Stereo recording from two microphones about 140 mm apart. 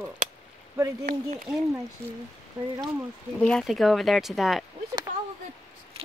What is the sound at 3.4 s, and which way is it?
Speech, 5° left (ahead or behind).